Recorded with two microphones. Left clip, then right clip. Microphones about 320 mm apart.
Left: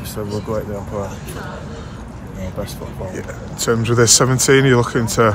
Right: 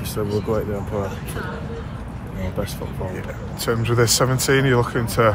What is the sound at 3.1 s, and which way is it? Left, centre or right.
Speech, left.